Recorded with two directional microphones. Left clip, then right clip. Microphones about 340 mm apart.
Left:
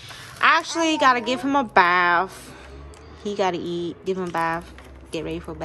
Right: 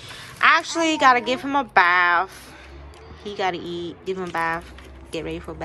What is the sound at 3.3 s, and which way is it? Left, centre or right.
A woman's voice, centre.